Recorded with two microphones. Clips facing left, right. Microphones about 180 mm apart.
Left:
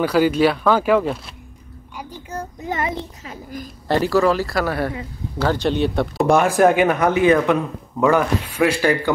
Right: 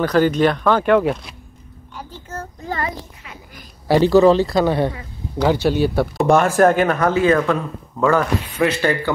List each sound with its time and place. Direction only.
0.0 s speech: 10° left (ahead or behind)
2.0 s child singing: 15° left (ahead or behind)
4.0 s speech: 25° right (ahead or behind)
5.4 s speech: 10° right (ahead or behind)
6.2 s speech: 10° left (ahead or behind)